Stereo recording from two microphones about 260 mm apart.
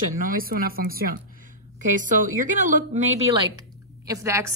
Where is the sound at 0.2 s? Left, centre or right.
Right.